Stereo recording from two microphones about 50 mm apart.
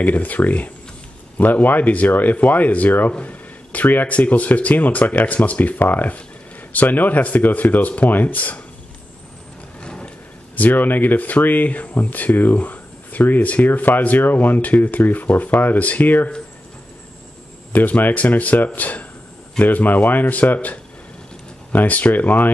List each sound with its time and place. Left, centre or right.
0.0 s speech: left
9.8 s speech: left
17.7 s speech: left